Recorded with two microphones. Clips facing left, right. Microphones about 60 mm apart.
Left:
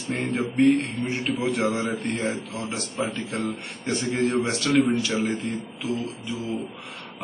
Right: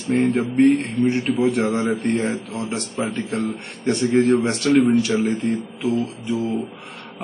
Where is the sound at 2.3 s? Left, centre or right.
Right.